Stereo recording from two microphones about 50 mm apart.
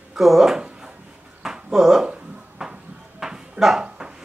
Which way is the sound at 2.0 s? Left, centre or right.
Centre.